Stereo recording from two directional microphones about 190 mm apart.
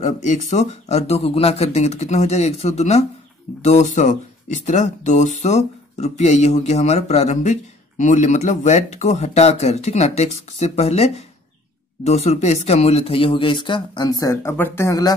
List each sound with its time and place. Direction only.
0.0 s speech: 40° left (ahead or behind); by 15.1 s 20° left (ahead or behind)